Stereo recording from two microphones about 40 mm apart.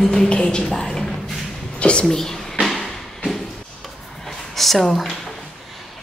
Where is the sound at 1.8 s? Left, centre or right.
Left.